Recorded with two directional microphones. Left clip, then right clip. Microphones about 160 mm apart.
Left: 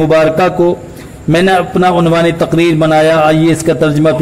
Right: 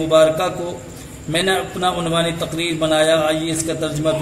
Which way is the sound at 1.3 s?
35° left (ahead or behind).